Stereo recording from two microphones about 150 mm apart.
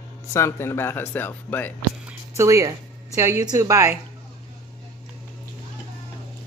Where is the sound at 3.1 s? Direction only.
20° right (ahead or behind).